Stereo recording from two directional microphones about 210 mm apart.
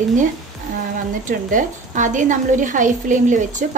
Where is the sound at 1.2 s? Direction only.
40° right (ahead or behind).